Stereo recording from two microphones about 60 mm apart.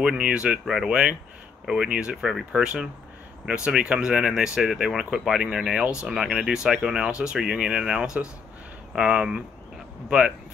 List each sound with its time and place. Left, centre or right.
0.0 s speech: centre